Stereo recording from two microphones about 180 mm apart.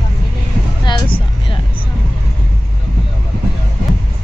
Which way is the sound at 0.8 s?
25° left (ahead or behind).